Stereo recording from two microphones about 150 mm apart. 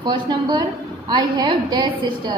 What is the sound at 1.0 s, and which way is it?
A woman's voice, 30° right (ahead or behind).